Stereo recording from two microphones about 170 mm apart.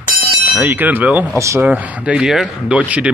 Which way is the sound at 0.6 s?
10° right (ahead or behind).